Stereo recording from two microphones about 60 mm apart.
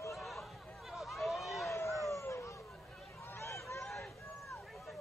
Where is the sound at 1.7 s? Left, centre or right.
Left.